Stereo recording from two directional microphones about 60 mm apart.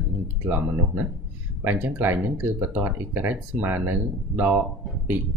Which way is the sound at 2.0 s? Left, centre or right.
Right.